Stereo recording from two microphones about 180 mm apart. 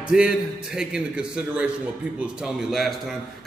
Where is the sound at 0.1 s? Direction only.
5° right (ahead or behind).